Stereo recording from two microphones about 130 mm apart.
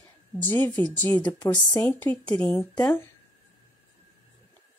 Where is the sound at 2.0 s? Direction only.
10° left (ahead or behind).